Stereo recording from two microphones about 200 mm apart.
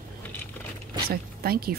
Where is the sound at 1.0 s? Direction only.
50° right (ahead or behind).